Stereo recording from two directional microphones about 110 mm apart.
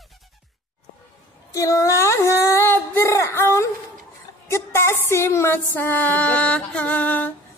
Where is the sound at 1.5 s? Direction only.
30° left (ahead or behind).